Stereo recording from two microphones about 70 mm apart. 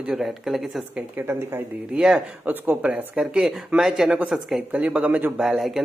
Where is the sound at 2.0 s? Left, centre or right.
Centre.